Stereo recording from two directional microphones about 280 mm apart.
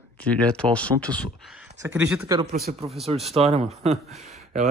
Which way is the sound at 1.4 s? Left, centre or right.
Centre.